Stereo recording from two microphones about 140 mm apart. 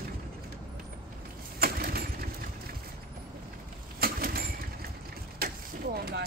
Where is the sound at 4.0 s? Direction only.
90° right.